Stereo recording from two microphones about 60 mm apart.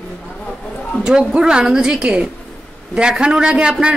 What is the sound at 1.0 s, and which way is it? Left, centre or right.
A man's voice, centre.